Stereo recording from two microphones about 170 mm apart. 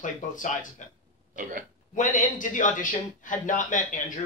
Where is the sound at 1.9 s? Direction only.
50° left (ahead or behind).